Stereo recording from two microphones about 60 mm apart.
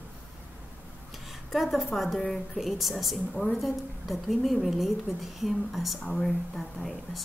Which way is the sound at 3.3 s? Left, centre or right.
Centre.